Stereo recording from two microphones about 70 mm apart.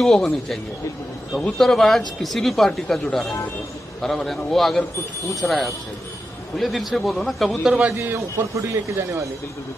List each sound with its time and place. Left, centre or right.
0.0 s speech: centre
7.9 s a man's voice: right